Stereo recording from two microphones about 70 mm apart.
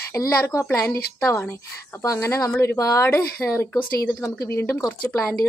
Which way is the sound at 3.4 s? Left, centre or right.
Left.